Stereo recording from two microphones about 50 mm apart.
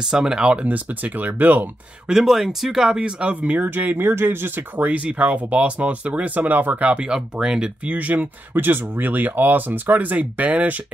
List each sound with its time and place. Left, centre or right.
0.1 s speech: centre; by 1.7 s right
2.0 s speech: centre
3.0 s speech: right
3.6 s speech: right
4.1 s speech: right
6.9 s speech: centre
7.8 s speech: right